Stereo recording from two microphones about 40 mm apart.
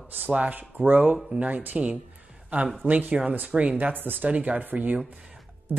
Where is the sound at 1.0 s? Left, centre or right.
Right.